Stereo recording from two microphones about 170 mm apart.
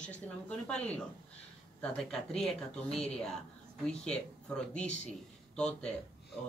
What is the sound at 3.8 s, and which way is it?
Speech, 5° left (ahead or behind).